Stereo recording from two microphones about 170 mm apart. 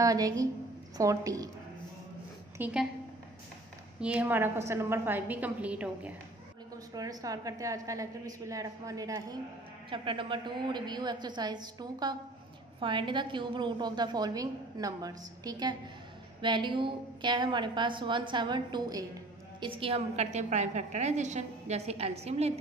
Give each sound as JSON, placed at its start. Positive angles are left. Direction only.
{"t": 0.0, "sound": "a woman's voice", "side_deg": -20}
{"t": 2.5, "sound": "a woman's voice", "side_deg": -10}
{"t": 4.0, "sound": "a woman's voice", "side_deg": -10}
{"t": 6.9, "sound": "a woman's voice", "side_deg": -20}